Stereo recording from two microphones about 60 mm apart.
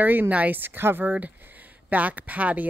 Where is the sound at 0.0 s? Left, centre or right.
Right.